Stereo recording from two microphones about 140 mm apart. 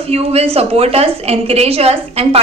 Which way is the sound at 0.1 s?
45° right (ahead or behind).